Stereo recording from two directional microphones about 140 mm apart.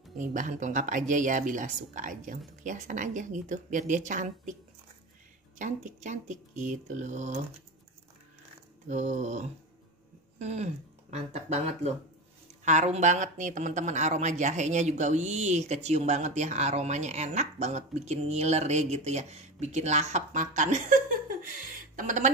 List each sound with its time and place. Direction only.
0.2 s speech: 65° right (ahead or behind)
5.6 s speech: 60° right (ahead or behind)
8.8 s speech: 60° right (ahead or behind)